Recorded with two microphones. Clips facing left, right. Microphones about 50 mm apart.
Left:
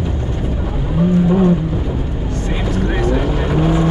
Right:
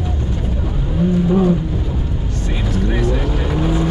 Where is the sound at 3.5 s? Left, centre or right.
Centre.